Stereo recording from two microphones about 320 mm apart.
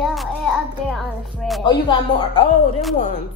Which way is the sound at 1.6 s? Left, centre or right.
Centre.